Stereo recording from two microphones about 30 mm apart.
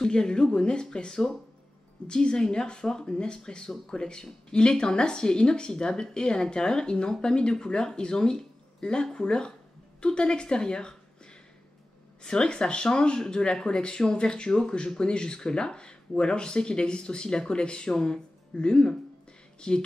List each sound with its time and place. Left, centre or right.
0.0 s speech: left
12.2 s speech: left